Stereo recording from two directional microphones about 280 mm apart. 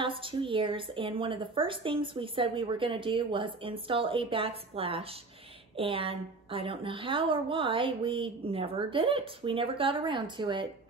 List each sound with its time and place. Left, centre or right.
0.0 s a woman's voice: centre